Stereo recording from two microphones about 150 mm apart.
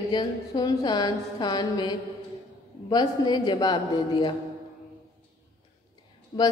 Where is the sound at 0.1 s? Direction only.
30° left (ahead or behind).